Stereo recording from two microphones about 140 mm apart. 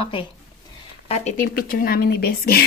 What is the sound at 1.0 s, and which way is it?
Speech, 50° left (ahead or behind).